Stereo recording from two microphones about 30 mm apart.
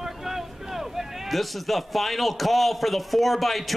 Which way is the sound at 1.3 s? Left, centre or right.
Centre.